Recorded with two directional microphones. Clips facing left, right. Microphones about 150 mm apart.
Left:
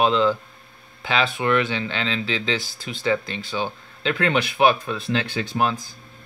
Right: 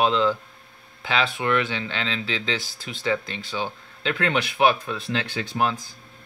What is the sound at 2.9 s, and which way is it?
Speech, 10° left (ahead or behind).